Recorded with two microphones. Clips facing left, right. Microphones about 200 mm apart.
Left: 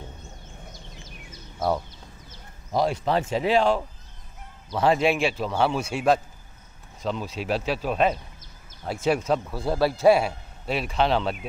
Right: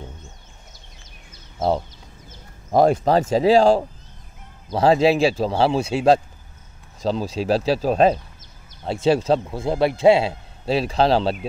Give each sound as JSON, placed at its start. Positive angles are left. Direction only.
{"t": 1.6, "sound": "a man's voice", "side_deg": -25}
{"t": 2.7, "sound": "speech", "side_deg": -50}
{"t": 3.2, "sound": "a man's voice", "side_deg": -35}